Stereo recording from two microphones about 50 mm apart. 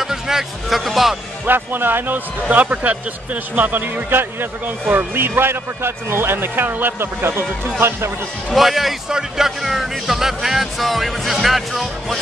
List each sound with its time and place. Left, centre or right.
0.0 s speech: centre
1.4 s a man's voice: right
8.5 s speech: centre